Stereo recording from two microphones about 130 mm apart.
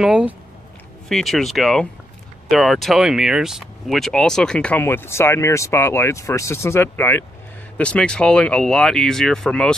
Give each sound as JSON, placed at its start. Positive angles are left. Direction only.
{"t": 0.0, "sound": "speech", "side_deg": -5}